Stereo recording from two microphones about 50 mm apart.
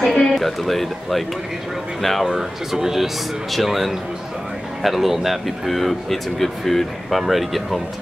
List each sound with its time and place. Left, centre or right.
0.0 s speech: centre